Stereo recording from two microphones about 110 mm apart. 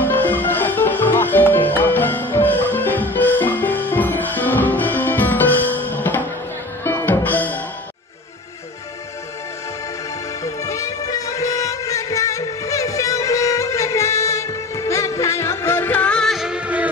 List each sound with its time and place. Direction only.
0.0 s music: 15° left (ahead or behind)
10.4 s music: 30° left (ahead or behind); by 16.9 s 10° right (ahead or behind)